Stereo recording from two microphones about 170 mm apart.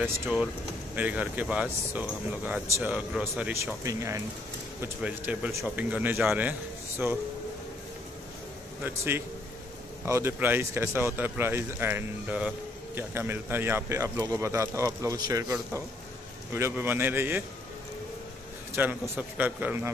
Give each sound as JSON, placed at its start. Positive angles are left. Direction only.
{"t": 0.9, "sound": "speech", "side_deg": -10}
{"t": 8.8, "sound": "speech", "side_deg": -15}
{"t": 16.5, "sound": "speech", "side_deg": -15}
{"t": 18.8, "sound": "speech", "side_deg": -10}